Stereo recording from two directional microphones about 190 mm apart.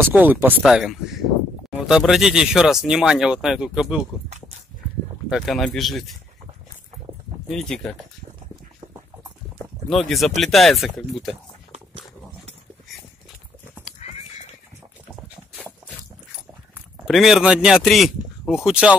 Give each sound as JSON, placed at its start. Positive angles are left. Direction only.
{"t": 0.0, "sound": "speech", "side_deg": -10}
{"t": 5.3, "sound": "speech", "side_deg": 0}
{"t": 7.4, "sound": "speech", "side_deg": 0}
{"t": 9.8, "sound": "speech", "side_deg": 0}
{"t": 13.9, "sound": "horse", "side_deg": 35}
{"t": 17.1, "sound": "speech", "side_deg": 0}